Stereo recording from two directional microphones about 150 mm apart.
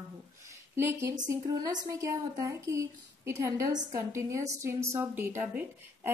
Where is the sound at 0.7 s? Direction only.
20° right (ahead or behind).